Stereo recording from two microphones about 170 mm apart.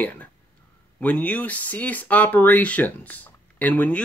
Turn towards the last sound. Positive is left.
turn(degrees=10)  # may be behind; listen again after turning